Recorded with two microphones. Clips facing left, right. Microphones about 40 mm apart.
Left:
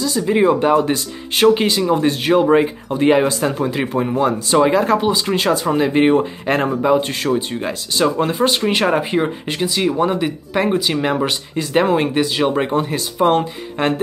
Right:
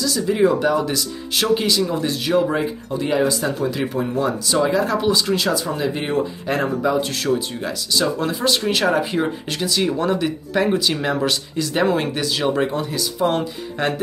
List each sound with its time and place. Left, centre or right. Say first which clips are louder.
0.0 s speech: left 2 dB; left
3.6 s speech: left 3 dB; left
4.9 s speech: left 2 dB; left
5.3 s speech: left 4 dB; left
12.6 s speech: left 4 dB; left